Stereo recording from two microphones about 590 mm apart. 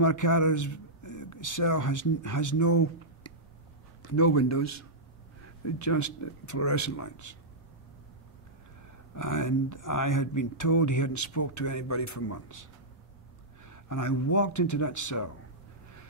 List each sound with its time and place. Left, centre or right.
0.0 s a man's voice: left
9.1 s speech: left
13.7 s speech: left